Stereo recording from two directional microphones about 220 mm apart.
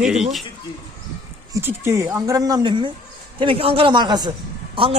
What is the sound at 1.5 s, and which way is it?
A man's voice, 10° right (ahead or behind).